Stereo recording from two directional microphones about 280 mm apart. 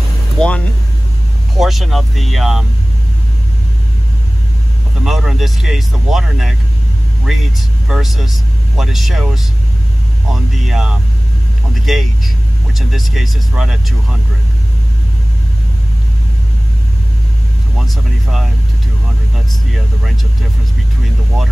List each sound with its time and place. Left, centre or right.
0.4 s speech: centre
1.6 s speech: centre
5.0 s speech: centre